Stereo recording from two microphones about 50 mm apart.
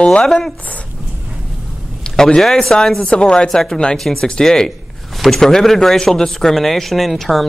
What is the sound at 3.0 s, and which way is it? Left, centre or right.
Speech, centre.